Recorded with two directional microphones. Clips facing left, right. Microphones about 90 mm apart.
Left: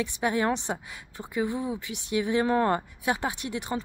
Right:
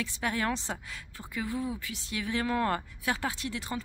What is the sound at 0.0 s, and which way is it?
A woman's voice, 20° left (ahead or behind).